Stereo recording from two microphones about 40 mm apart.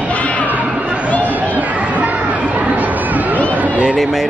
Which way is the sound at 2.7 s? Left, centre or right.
Right.